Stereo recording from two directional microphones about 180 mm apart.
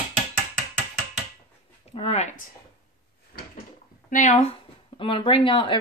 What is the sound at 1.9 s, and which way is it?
Speech, 35° left (ahead or behind).